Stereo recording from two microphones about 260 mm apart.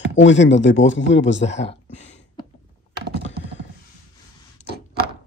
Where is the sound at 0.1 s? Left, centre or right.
Left.